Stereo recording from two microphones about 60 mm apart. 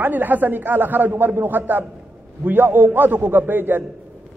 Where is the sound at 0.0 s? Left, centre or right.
Right.